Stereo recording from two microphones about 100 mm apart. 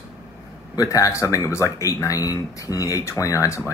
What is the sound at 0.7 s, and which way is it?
Speech, 35° left (ahead or behind).